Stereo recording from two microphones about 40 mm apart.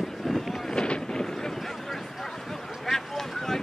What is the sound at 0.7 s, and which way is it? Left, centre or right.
Wind noise, left.